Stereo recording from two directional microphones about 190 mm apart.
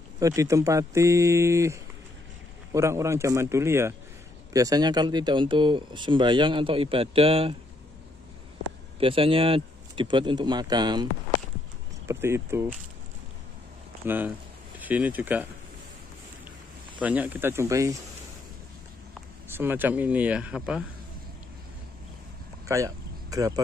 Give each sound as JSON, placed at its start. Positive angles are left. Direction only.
{"t": 0.2, "sound": "speech", "side_deg": -15}
{"t": 9.0, "sound": "speech", "side_deg": -30}
{"t": 14.0, "sound": "speech", "side_deg": -10}
{"t": 17.0, "sound": "speech", "side_deg": -10}
{"t": 19.5, "sound": "speech", "side_deg": -10}
{"t": 22.7, "sound": "speech", "side_deg": -15}